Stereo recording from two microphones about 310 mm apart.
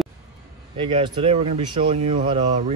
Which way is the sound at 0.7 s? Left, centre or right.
Centre.